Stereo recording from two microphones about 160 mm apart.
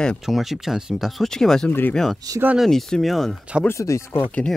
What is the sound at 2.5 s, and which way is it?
Speech, centre (ahead or behind).